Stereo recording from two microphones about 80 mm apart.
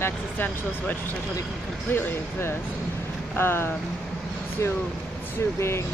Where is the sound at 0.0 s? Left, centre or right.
Left.